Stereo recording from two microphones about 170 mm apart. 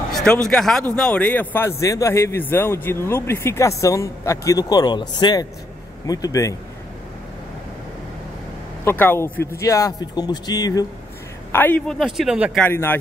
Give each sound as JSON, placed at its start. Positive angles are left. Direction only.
{"t": 0.1, "sound": "a man's voice", "side_deg": 5}
{"t": 8.8, "sound": "a man's voice", "side_deg": 10}
{"t": 11.5, "sound": "a man's voice", "side_deg": 10}
{"t": 12.0, "sound": "speech", "side_deg": -5}
{"t": 12.5, "sound": "a man's voice", "side_deg": 10}